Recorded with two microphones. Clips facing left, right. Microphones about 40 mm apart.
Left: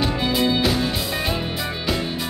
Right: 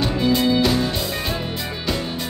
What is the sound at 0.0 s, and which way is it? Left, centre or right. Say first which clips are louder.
Music: right 2 dB; centre.